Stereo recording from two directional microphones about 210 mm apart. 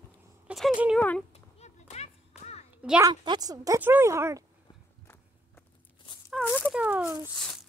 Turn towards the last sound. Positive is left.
turn(degrees=5)  # may be behind; listen again after turning